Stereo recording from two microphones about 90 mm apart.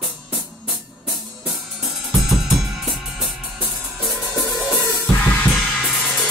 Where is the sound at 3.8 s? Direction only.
Centre (ahead or behind).